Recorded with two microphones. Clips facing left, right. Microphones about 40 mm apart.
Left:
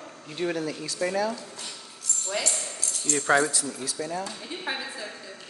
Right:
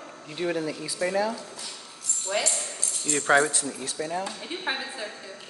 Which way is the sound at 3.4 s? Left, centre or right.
Right.